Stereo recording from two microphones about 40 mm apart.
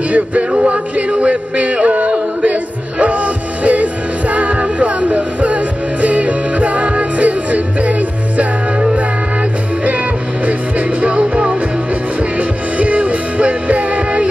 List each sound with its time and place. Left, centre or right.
0.1 s music: right